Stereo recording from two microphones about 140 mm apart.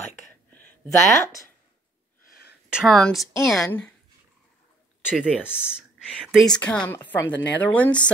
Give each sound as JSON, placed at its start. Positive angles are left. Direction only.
{"t": 0.8, "sound": "speech", "side_deg": 25}
{"t": 2.7, "sound": "a woman's voice", "side_deg": 0}
{"t": 5.1, "sound": "a woman's voice", "side_deg": -5}